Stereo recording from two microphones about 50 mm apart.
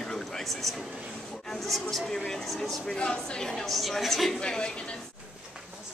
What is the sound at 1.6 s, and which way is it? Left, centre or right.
Speech, centre.